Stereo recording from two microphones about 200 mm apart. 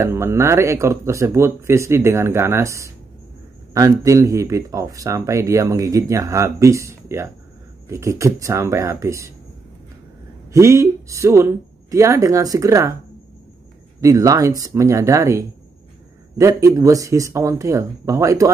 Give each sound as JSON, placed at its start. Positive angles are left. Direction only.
{"t": 0.0, "sound": "speech", "side_deg": -15}
{"t": 10.5, "sound": "speech", "side_deg": -15}
{"t": 14.0, "sound": "speech", "side_deg": -15}